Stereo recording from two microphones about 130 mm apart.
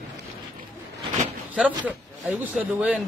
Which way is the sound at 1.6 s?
10° right (ahead or behind).